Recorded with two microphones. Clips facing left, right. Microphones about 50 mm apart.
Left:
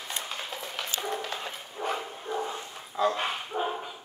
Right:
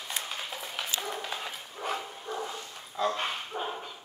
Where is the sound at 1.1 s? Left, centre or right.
Centre.